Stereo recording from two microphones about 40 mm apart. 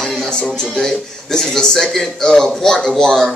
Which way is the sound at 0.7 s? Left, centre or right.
Centre.